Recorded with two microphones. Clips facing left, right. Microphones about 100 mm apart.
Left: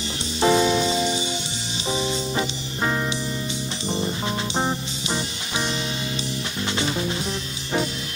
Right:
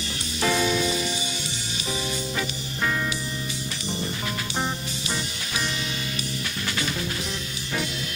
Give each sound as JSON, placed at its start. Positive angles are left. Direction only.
{"t": 0.4, "sound": "music", "side_deg": 25}
{"t": 4.6, "sound": "music", "side_deg": 25}